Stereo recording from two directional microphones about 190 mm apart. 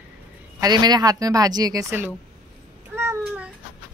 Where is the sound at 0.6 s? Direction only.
20° right (ahead or behind).